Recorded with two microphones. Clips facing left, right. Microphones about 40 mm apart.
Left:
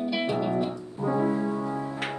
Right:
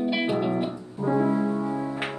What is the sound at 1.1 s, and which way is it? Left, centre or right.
Piano, right.